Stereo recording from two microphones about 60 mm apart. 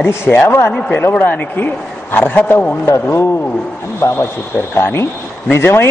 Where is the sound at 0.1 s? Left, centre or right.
Left.